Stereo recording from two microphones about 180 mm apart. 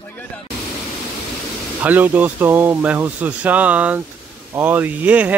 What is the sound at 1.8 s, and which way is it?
Speech, 10° right (ahead or behind).